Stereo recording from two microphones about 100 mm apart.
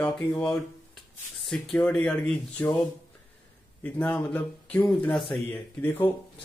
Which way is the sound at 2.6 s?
25° left (ahead or behind).